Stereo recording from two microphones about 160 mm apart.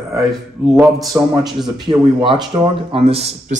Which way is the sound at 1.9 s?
30° right (ahead or behind).